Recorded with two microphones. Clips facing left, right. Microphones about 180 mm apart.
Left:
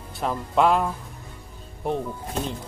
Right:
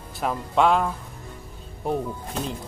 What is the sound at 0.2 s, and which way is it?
Speech, centre (ahead or behind).